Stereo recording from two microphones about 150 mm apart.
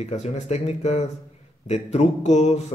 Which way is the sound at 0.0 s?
50° left (ahead or behind).